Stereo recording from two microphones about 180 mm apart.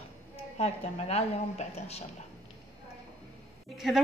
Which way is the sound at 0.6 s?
35° left (ahead or behind).